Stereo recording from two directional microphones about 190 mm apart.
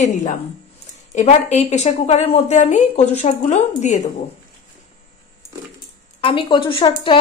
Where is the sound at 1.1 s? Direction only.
35° left (ahead or behind).